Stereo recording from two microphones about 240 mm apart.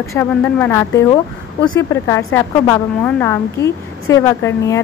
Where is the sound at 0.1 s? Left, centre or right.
Centre.